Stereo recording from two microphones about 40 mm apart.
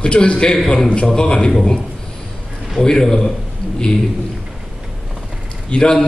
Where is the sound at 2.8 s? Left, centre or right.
Centre.